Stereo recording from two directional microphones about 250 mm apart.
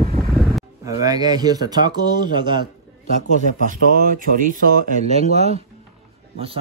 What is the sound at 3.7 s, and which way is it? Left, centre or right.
Speech, right.